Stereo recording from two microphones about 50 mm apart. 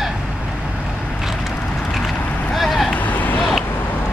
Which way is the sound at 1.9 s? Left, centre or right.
Centre.